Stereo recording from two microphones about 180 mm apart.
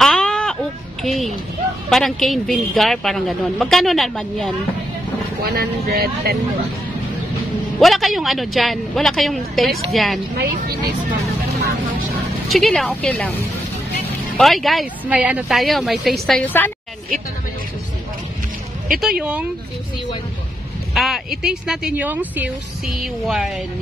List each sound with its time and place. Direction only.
0.0 s a sound: 5° left (ahead or behind)
1.0 s speech: centre (ahead or behind)
5.4 s speech: 60° right (ahead or behind)
7.8 s speech: centre (ahead or behind)
10.3 s speech: 60° right (ahead or behind)
12.4 s speech: centre (ahead or behind)
14.3 s speech: centre (ahead or behind)
18.9 s speech: 5° right (ahead or behind)
20.9 s speech: centre (ahead or behind)